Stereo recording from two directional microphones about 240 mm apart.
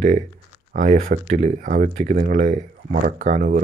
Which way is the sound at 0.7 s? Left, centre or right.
Right.